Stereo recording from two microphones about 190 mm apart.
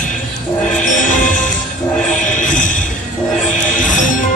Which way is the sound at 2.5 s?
40° left (ahead or behind).